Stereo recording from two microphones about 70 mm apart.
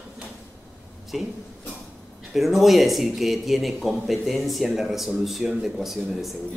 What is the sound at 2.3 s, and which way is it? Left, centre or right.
Speech, centre.